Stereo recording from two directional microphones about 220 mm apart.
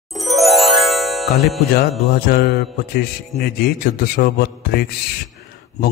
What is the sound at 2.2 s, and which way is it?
A man's voice, 45° left (ahead or behind).